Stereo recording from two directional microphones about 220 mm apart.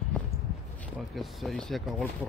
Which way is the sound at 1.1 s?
Centre (ahead or behind).